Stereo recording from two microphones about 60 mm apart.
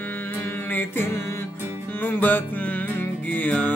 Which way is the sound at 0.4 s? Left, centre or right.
Left.